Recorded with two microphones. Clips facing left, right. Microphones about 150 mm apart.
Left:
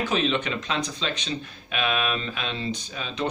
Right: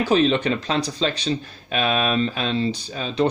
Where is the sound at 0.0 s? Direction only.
35° right (ahead or behind).